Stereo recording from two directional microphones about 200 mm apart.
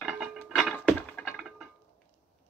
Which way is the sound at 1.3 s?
5° right (ahead or behind).